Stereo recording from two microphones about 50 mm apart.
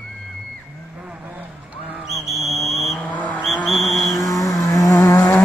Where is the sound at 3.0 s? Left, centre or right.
Left.